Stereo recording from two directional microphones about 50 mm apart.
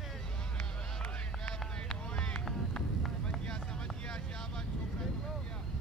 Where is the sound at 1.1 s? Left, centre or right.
Centre.